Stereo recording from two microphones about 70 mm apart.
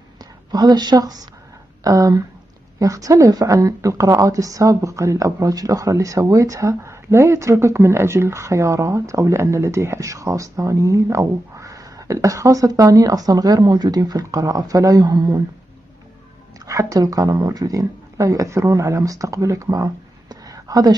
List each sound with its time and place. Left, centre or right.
0.5 s a woman's voice: right
1.8 s a woman's voice: right
16.6 s speech: right